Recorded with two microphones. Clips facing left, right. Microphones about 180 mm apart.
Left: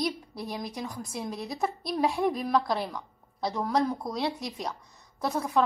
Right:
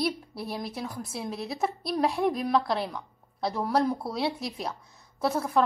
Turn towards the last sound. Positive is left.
turn(degrees=0)  # may be behind; listen again after turning